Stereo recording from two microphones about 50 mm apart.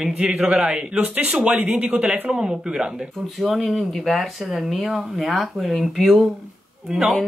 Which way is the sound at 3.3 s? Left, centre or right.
Centre.